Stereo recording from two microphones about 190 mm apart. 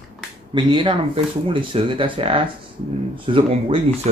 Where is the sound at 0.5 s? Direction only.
25° right (ahead or behind).